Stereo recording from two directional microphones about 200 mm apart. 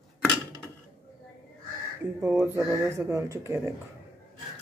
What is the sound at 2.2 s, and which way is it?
Speech, 10° right (ahead or behind).